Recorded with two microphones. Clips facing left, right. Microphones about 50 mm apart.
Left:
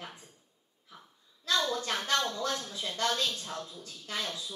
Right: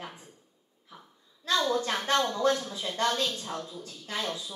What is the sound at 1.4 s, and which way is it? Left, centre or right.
A woman's voice, right.